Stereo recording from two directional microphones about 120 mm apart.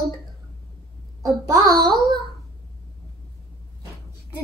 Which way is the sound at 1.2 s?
30° right (ahead or behind).